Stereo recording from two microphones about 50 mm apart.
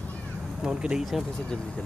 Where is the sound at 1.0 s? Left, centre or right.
Centre.